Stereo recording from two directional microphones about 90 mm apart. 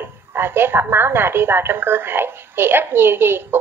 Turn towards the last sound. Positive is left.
turn(degrees=-25)  # may be behind; listen again after turning